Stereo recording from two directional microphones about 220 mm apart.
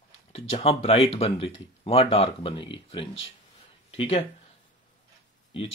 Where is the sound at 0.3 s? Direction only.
25° left (ahead or behind).